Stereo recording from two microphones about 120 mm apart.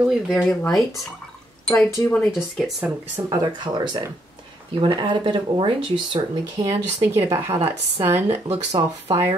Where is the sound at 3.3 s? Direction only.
35° right (ahead or behind).